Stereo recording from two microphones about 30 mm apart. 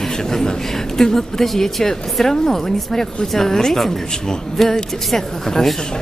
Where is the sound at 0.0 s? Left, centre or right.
Centre.